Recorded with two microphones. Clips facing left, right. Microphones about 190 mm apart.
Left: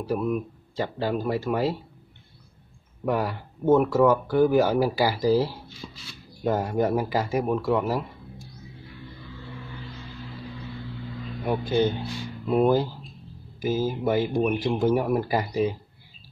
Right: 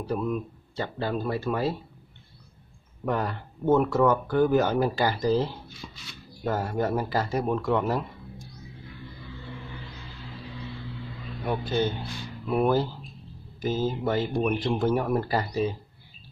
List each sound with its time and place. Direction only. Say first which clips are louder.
0.0 s speech: left 2 dB; 10° left (ahead or behind)
3.1 s speech: left 2 dB; 10° left (ahead or behind)
11.4 s speech: left 3 dB; 15° left (ahead or behind)